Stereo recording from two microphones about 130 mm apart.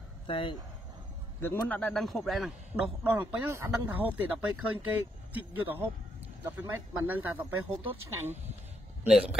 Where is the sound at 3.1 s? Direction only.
15° right (ahead or behind).